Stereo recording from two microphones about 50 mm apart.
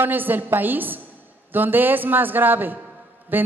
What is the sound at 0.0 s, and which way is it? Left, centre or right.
A man's voice, right.